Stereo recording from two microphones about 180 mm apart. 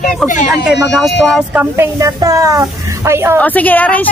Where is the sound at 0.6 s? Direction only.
Centre (ahead or behind).